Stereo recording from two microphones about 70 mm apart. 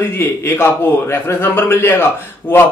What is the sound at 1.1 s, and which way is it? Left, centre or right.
Speech, left.